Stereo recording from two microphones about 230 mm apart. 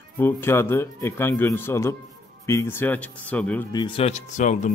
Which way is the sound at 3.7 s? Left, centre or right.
Left.